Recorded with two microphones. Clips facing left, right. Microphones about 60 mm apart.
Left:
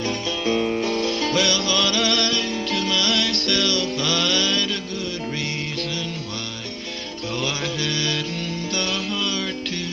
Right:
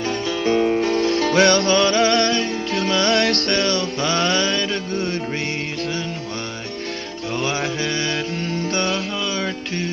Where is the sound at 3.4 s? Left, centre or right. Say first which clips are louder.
Right 2 dB; right.